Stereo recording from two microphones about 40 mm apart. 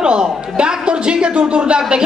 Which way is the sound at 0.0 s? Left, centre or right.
Right.